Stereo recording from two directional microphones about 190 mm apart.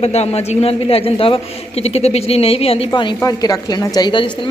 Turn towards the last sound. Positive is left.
turn(degrees=25)  # may be behind; listen again after turning